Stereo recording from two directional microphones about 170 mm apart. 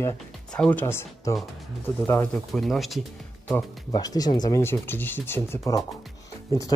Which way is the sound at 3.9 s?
20° left (ahead or behind).